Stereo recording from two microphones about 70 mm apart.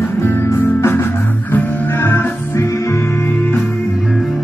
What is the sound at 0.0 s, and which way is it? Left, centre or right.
Music, left.